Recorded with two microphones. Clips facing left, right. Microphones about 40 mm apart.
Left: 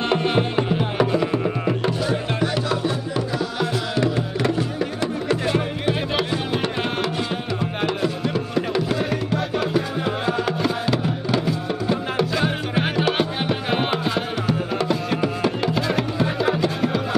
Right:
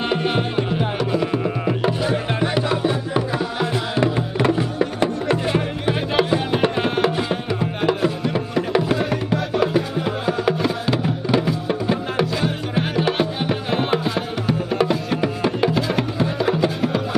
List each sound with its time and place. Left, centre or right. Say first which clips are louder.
0.1 s music: left 2 dB; centre
1.9 s music: right 2 dB; centre
7.8 s music: right 3 dB; centre
10.4 s music: right 2 dB; centre
13.9 s music: right 2 dB; centre
15.1 s music: right 1 dB; centre